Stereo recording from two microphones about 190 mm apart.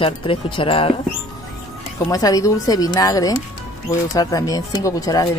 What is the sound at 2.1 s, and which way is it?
Speech, 20° left (ahead or behind).